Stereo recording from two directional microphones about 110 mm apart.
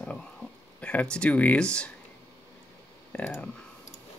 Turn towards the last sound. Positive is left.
turn(degrees=15)  # may be behind; listen again after turning